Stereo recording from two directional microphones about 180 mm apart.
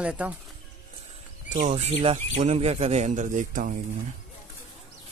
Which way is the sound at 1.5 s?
40° right (ahead or behind).